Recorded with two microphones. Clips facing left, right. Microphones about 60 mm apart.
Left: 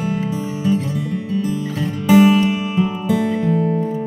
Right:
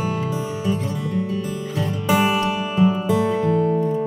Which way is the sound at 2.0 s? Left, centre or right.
Centre.